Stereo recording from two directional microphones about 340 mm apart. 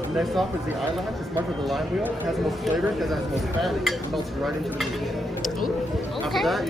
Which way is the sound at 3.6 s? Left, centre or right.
Centre.